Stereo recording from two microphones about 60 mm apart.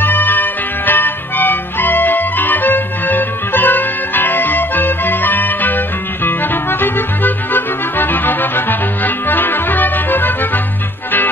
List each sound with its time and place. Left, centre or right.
0.0 s music: left